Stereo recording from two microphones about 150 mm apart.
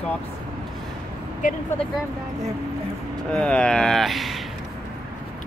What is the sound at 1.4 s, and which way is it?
Speech, 60° left (ahead or behind).